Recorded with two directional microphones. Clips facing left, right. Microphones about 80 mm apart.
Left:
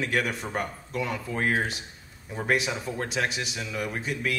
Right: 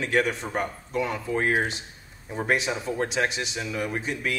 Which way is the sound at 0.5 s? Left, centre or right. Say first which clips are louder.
Right 4 dB; centre.